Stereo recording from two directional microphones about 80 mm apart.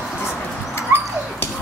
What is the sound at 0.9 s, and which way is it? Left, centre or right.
Dog, right.